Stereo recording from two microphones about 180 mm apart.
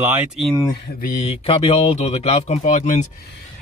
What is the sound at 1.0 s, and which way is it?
Speech, 40° left (ahead or behind).